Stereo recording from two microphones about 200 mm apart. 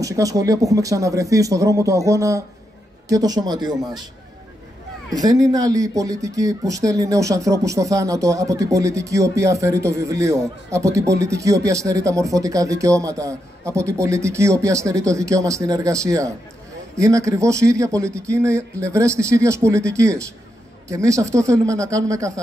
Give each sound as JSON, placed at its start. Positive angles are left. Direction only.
{"t": 0.0, "sound": "a man's voice", "side_deg": -15}
{"t": 5.1, "sound": "speech", "side_deg": -20}